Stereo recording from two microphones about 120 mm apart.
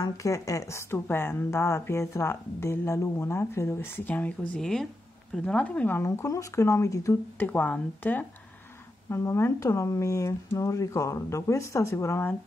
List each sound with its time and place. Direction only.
0.0 s a woman's voice: 25° left (ahead or behind)
7.3 s a woman's voice: 15° left (ahead or behind)